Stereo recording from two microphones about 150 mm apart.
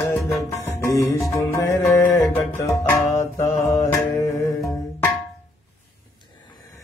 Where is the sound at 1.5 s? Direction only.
20° left (ahead or behind).